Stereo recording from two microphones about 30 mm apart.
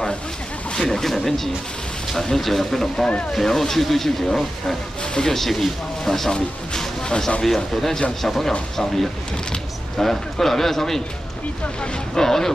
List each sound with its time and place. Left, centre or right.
0.7 s speech: centre
5.0 s speech: left
5.3 s speech: centre
7.0 s speech: left
7.4 s speech: centre
12.2 s speech: centre